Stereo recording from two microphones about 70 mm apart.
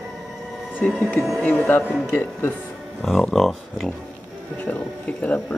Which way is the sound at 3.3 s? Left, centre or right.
Centre.